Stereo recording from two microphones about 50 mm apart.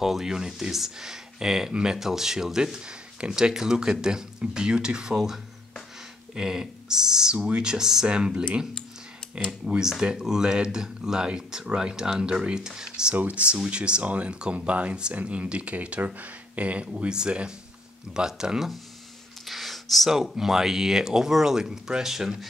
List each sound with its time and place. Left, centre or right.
0.0 s speech: centre
9.8 s speech: centre
13.1 s speech: right; by 18.7 s centre
19.4 s a sound: centre
20.3 s speech: centre